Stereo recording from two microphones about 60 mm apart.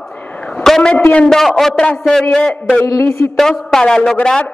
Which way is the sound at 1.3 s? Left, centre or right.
Centre.